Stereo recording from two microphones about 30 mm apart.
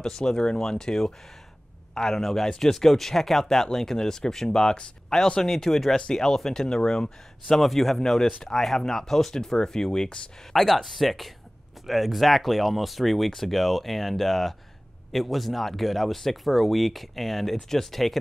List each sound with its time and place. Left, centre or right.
0.0 s speech: left
5.4 s speech: centre
6.7 s speech: left
7.5 s speech: centre
8.0 s speech: centre
9.3 s speech: centre
10.5 s speech: centre